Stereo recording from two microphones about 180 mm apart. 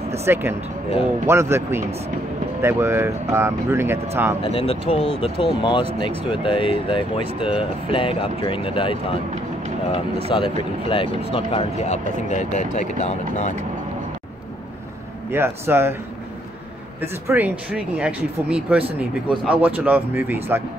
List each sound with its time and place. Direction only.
0.2 s speech: 15° right (ahead or behind)
4.4 s speech: 30° left (ahead or behind)
10.3 s speech: 30° left (ahead or behind)
15.3 s speech: 15° right (ahead or behind)
17.0 s speech: 10° right (ahead or behind)